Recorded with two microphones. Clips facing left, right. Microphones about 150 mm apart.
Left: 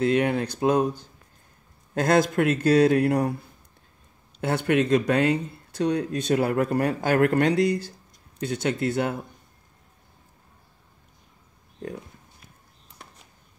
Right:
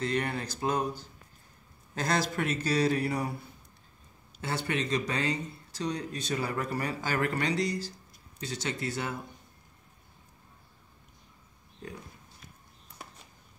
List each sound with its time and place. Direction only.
0.0 s speech: 60° left (ahead or behind)
2.0 s a man's voice: 55° left (ahead or behind)
4.4 s speech: 60° left (ahead or behind)
13.0 s a sound: 5° right (ahead or behind)